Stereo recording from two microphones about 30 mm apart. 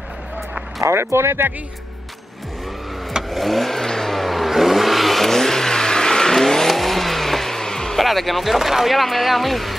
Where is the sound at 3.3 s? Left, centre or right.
Centre.